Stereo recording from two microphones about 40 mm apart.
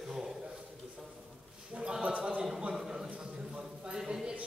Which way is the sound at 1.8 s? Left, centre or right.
Right.